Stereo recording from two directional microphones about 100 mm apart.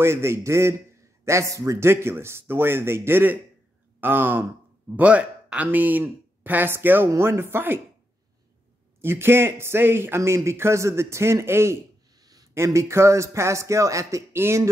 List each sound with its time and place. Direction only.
0.0 s speech: 25° right (ahead or behind)
9.0 s speech: 25° right (ahead or behind)
12.2 s speech: 40° right (ahead or behind)